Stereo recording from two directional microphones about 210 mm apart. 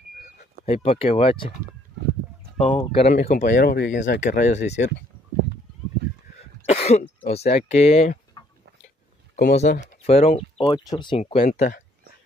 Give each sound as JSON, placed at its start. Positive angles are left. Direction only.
{"t": 0.7, "sound": "speech", "side_deg": 30}
{"t": 2.6, "sound": "speech", "side_deg": 25}
{"t": 6.6, "sound": "speech", "side_deg": 30}
{"t": 9.4, "sound": "speech", "side_deg": 35}
{"t": 11.4, "sound": "speech", "side_deg": 40}